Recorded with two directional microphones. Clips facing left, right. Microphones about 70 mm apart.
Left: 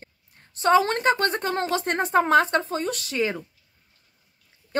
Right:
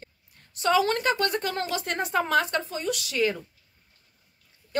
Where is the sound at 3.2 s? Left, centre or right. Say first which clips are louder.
Even; left.